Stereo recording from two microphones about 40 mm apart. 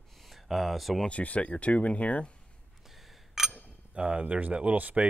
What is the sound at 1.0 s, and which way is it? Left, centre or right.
Speech, left.